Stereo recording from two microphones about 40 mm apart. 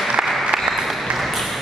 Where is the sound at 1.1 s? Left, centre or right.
Centre.